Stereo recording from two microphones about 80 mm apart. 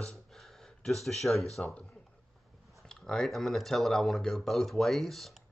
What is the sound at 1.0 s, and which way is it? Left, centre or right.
Speech, centre.